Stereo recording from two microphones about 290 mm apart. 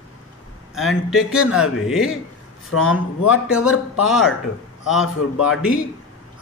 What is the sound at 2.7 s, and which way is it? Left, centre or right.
Speech, left.